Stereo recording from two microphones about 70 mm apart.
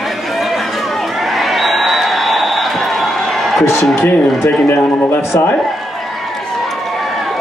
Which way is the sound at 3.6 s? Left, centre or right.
Left.